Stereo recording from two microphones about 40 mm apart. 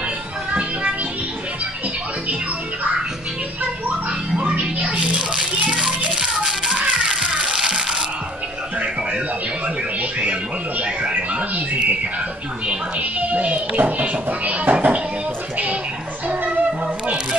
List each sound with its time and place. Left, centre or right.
4.5 s music: right
6.7 s music: right
7.0 s children playing: centre
7.5 s music: centre
10.8 s a sound: right
13.2 s a sound: right